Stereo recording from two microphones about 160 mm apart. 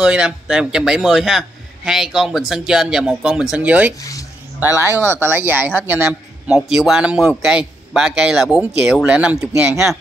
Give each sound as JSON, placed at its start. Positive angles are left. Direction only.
{"t": 0.0, "sound": "speech", "side_deg": -5}
{"t": 4.0, "sound": "a sound", "side_deg": 20}
{"t": 4.7, "sound": "a man's voice", "side_deg": -15}